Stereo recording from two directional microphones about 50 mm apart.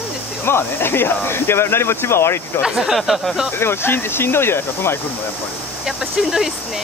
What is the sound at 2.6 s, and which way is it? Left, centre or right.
Speech, centre.